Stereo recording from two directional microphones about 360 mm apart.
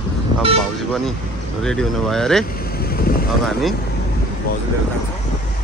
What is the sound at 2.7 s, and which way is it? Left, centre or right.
Vehicle, left.